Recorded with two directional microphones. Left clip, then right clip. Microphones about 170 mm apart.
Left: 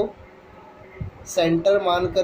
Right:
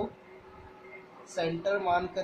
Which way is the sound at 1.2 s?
35° left (ahead or behind).